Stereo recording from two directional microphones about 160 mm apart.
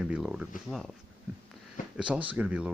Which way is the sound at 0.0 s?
5° right (ahead or behind).